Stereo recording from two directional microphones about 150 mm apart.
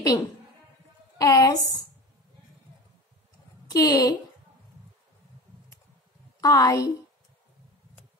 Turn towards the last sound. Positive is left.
turn(degrees=20)  # may be behind; listen again after turning